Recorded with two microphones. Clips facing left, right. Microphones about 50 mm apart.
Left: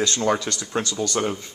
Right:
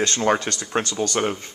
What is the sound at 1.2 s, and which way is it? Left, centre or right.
Speech, right.